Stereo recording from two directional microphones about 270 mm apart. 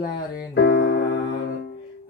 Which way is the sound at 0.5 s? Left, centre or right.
Left.